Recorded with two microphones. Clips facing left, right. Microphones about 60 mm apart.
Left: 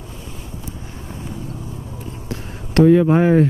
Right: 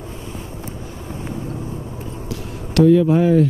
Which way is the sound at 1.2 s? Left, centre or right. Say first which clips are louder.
Right 4 dB; right.